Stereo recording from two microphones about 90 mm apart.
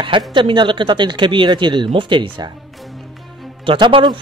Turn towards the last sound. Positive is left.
turn(degrees=-65)  # may be behind; listen again after turning